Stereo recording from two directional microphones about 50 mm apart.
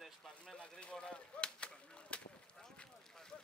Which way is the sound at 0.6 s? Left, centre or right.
Left.